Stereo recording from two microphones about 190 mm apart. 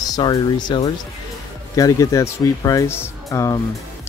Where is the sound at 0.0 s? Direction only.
20° left (ahead or behind).